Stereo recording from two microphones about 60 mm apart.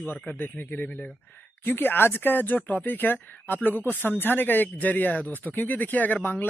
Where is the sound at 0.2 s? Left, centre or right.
Left.